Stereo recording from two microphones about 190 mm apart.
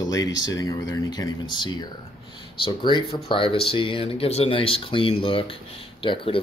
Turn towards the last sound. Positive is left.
turn(degrees=30)  # may be behind; listen again after turning